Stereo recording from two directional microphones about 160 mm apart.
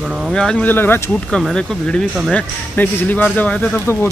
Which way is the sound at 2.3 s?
10° left (ahead or behind).